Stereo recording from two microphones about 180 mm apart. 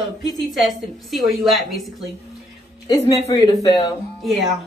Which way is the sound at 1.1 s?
Centre (ahead or behind).